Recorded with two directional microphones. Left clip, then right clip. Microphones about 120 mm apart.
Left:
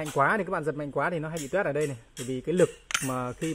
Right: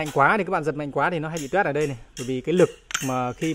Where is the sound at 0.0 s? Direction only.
20° right (ahead or behind).